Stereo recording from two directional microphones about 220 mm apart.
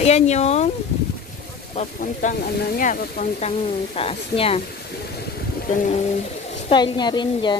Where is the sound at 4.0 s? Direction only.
25° left (ahead or behind).